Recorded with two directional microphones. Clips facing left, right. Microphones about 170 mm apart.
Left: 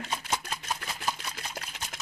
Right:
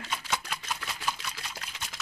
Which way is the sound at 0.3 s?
40° left (ahead or behind).